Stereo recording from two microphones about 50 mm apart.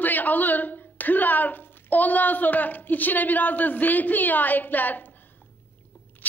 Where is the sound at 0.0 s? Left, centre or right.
Left.